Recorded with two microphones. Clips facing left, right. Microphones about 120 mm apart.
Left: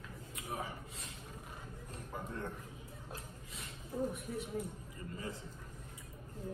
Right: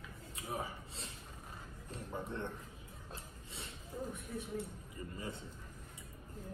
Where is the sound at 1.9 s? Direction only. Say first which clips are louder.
Right 3 dB; 30° right (ahead or behind).